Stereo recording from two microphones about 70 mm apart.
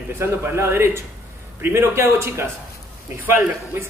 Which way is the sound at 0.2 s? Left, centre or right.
Right.